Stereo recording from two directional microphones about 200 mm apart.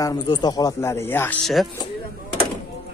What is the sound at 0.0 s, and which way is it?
Speech, 20° left (ahead or behind).